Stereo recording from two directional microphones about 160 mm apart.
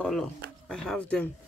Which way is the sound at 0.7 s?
5° left (ahead or behind).